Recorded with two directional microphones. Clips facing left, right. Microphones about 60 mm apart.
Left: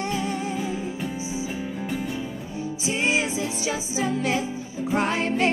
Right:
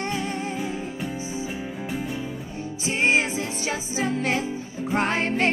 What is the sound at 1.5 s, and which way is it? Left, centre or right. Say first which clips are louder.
Music: left 1 dB; centre.